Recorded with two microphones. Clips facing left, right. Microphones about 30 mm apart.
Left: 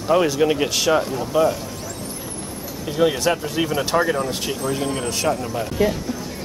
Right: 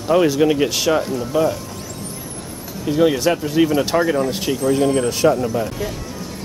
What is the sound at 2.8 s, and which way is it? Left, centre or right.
Speech, centre.